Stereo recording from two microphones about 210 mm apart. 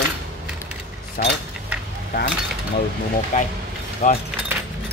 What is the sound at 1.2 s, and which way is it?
Speech, 45° left (ahead or behind).